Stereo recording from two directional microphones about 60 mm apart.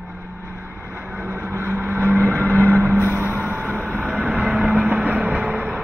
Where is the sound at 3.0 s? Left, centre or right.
Right.